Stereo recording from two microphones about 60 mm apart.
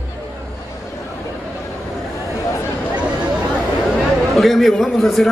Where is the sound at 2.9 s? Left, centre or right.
Centre.